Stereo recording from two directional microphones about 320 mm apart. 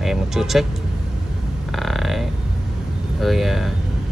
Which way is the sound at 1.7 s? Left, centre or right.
Centre.